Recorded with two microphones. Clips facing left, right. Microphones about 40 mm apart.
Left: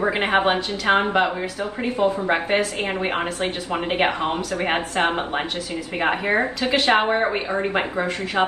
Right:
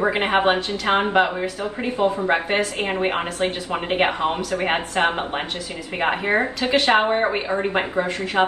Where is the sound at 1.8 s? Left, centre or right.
Right.